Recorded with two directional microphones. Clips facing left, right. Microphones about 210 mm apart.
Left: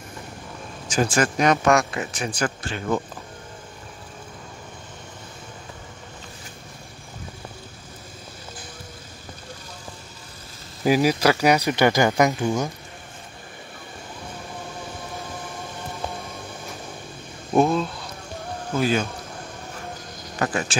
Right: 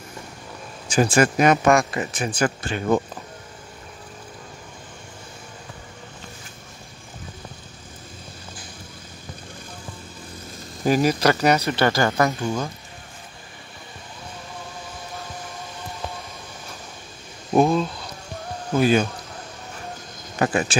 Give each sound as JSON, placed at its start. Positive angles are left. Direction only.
{"t": 0.9, "sound": "speech", "side_deg": -10}
{"t": 10.8, "sound": "speech", "side_deg": 5}
{"t": 17.6, "sound": "a sound", "side_deg": 0}
{"t": 18.8, "sound": "speech", "side_deg": -15}
{"t": 20.3, "sound": "speech", "side_deg": -20}